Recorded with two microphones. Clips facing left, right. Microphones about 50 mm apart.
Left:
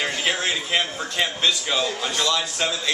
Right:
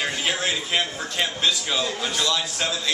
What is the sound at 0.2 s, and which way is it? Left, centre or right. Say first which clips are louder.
A man's voice: left 1 dB; centre.